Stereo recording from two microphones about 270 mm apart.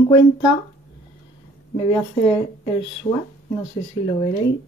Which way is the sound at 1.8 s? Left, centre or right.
Centre.